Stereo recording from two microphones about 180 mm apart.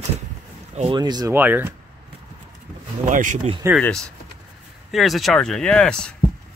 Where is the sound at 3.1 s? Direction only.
45° right (ahead or behind).